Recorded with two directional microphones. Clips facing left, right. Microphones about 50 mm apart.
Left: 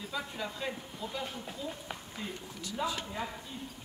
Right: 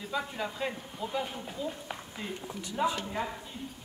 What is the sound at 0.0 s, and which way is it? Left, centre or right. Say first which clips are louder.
A woman's voice: right 4 dB; centre.